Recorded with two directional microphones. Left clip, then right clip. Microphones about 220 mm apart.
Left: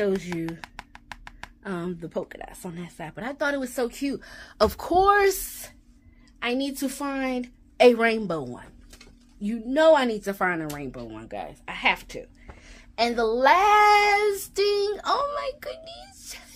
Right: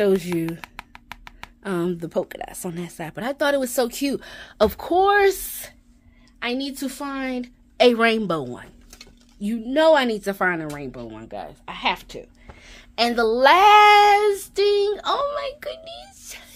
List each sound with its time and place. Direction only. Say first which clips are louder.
0.0 s speech: right 6 dB; 45° right (ahead or behind)
0.5 s music: right 4 dB; 10° right (ahead or behind)
1.6 s speech: right 8 dB; 50° right (ahead or behind)
4.3 s speech: right 2 dB; 25° right (ahead or behind)
4.6 s a child's voice: right 1 dB; 10° right (ahead or behind)
12.6 s speech: right 3 dB; 35° right (ahead or behind)